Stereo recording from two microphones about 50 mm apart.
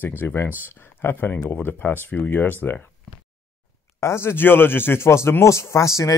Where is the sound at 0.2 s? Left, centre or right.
Left.